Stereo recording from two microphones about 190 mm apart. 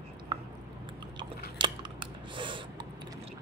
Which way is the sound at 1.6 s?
25° right (ahead or behind).